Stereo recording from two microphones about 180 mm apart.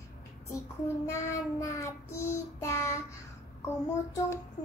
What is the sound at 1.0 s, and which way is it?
Child singing, 15° left (ahead or behind).